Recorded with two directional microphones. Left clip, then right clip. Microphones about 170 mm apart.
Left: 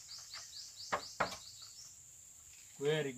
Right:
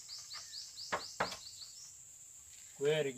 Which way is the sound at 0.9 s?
15° left (ahead or behind).